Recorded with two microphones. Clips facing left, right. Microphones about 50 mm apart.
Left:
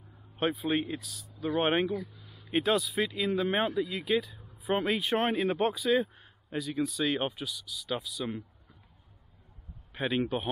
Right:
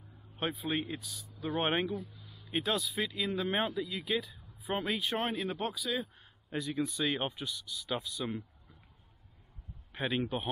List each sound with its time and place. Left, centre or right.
0.4 s speech: centre
2.1 s a sound: centre
2.4 s speech: centre
5.7 s speech: centre
7.4 s speech: centre
9.9 s speech: centre